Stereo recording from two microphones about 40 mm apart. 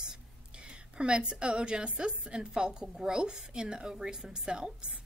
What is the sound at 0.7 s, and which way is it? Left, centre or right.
A woman's voice, right.